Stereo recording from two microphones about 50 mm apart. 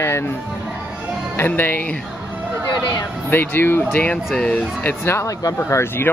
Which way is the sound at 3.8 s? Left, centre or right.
Left.